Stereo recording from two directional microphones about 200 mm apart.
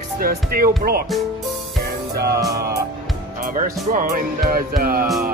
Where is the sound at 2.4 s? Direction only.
50° right (ahead or behind).